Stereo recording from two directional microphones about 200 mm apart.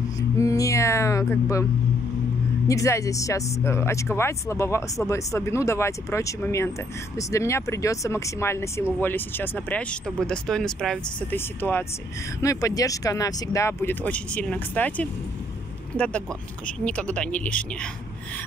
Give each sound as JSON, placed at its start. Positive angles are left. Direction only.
{"t": 0.4, "sound": "a sound", "side_deg": 15}
{"t": 2.7, "sound": "speech", "side_deg": 15}
{"t": 16.8, "sound": "speech", "side_deg": 5}